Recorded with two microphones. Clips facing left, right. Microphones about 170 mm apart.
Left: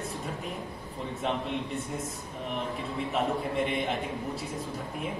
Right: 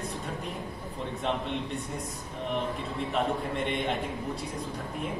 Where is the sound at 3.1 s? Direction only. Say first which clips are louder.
Even; centre (ahead or behind).